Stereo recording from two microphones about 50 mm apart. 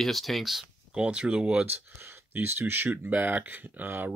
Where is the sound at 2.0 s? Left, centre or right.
Right.